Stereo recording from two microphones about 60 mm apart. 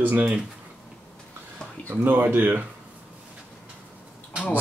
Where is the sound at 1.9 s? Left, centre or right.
Right.